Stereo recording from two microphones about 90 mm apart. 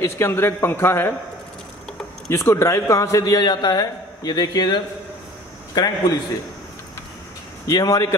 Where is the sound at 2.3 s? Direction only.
30° left (ahead or behind); by 4.8 s 45° left (ahead or behind).